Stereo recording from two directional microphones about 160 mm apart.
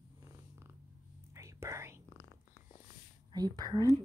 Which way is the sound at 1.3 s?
20° right (ahead or behind).